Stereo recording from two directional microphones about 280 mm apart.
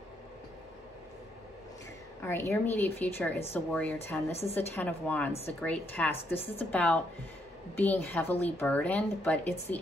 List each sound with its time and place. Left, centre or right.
2.2 s speech: centre
4.3 s a woman's voice: left
4.6 s speech: centre
6.1 s a woman's voice: left
6.7 s speech: centre